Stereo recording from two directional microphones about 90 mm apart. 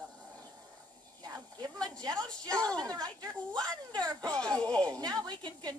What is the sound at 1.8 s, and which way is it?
Speech, 50° right (ahead or behind).